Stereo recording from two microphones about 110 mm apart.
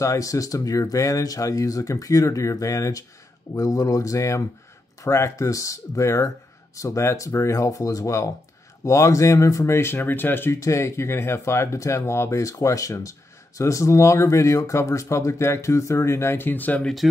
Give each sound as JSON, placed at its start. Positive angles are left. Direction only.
{"t": 0.0, "sound": "speech", "side_deg": 30}